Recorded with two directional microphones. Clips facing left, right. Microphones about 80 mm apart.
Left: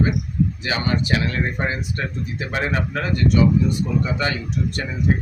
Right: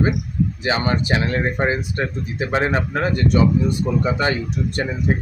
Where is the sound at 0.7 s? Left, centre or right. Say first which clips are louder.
Right 5 dB; right.